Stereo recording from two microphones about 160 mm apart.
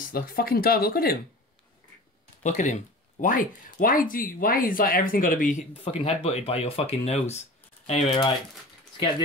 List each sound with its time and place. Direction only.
0.1 s speech: 70° left (ahead or behind)
2.4 s speech: 50° left (ahead or behind)